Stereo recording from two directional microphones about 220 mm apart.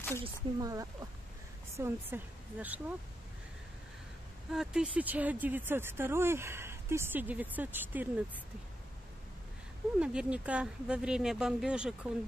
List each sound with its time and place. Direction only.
0.2 s speech: 15° right (ahead or behind)
4.5 s speech: 5° right (ahead or behind)
9.9 s speech: 5° right (ahead or behind)